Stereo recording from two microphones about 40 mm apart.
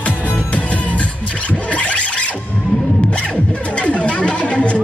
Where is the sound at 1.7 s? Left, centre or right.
Left.